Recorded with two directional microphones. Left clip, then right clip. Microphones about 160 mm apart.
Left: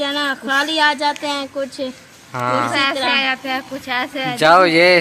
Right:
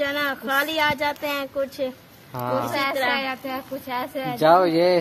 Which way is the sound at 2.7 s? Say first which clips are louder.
Left 6 dB; 90° right.